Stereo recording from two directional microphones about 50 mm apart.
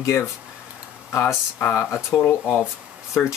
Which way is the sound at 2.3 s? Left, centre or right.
Left.